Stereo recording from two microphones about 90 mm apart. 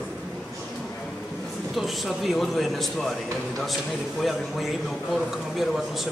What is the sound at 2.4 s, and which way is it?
Speech, centre (ahead or behind).